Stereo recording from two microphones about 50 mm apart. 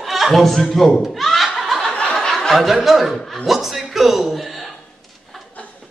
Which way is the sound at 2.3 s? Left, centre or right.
Centre.